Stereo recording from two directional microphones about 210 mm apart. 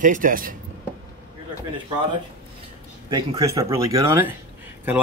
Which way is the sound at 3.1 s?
15° right (ahead or behind).